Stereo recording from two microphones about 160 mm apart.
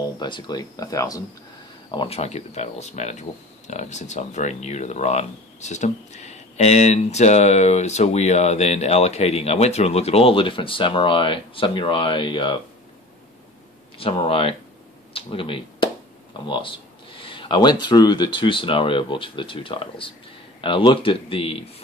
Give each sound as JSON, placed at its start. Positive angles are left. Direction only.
{"t": 0.2, "sound": "speech", "side_deg": 25}
{"t": 1.9, "sound": "speech", "side_deg": 35}
{"t": 13.9, "sound": "speech", "side_deg": 35}
{"t": 15.1, "sound": "a sound", "side_deg": 35}
{"t": 16.4, "sound": "speech", "side_deg": 30}